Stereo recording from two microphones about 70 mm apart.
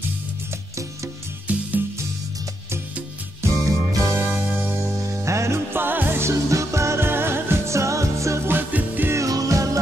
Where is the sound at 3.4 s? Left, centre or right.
Right.